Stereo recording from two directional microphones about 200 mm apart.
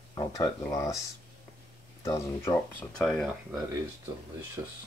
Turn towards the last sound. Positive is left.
turn(degrees=-15)  # may be behind; listen again after turning